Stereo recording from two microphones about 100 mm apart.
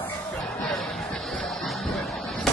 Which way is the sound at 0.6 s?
5° left (ahead or behind).